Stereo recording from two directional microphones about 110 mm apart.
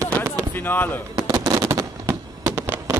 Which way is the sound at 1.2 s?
35° right (ahead or behind).